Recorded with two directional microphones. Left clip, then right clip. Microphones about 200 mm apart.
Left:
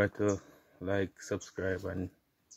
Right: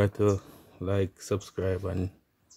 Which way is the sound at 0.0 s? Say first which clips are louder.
Right 4 dB; 25° right (ahead or behind).